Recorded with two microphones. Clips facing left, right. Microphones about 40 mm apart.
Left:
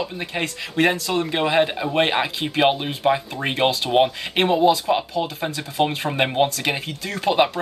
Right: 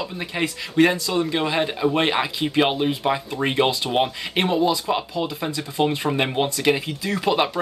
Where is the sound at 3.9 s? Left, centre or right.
Centre.